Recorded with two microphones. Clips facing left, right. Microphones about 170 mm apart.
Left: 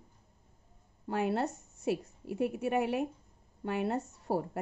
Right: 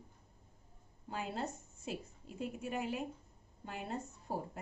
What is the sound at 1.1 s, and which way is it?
A woman's voice, 70° left (ahead or behind).